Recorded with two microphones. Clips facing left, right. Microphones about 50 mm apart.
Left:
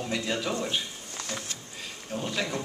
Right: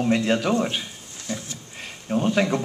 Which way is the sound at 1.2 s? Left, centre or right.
Left.